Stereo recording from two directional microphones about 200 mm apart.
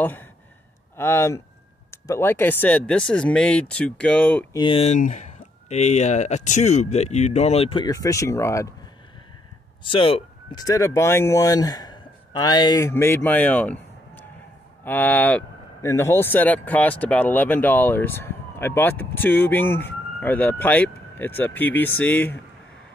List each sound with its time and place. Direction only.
0.9 s speech: 10° left (ahead or behind)
4.6 s speech: 25° left (ahead or behind)
9.8 s speech: 25° left (ahead or behind); by 22.4 s 10° left (ahead or behind)